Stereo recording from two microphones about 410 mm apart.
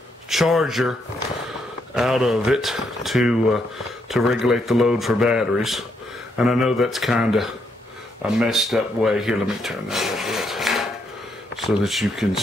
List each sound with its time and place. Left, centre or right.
0.3 s speech: centre
2.0 s speech: centre